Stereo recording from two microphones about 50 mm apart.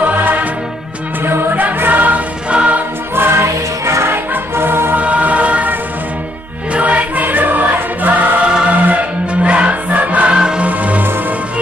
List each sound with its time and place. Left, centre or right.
0.0 s music: right
3.2 s music: right
4.1 s music: right
4.9 s music: right
6.7 s music: right
10.3 s music: centre
10.7 s music: right